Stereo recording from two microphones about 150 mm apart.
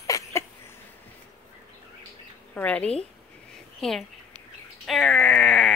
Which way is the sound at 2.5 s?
10° left (ahead or behind).